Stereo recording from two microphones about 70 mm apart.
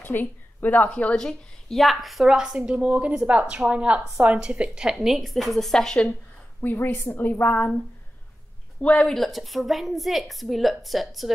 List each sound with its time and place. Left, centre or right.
0.0 s a woman's voice: left
0.8 s a woman's voice: centre
4.9 s a woman's voice: centre
6.6 s a woman's voice: left
8.8 s speech: centre
9.1 s a woman's voice: centre